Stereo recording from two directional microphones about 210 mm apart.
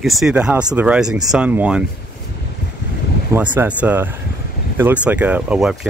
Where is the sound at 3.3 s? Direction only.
10° right (ahead or behind).